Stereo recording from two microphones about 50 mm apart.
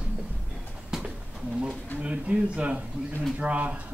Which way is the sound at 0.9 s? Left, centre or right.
Centre.